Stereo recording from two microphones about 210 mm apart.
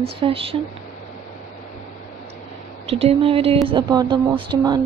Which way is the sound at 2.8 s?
25° right (ahead or behind).